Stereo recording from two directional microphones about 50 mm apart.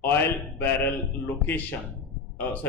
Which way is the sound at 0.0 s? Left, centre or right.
Left.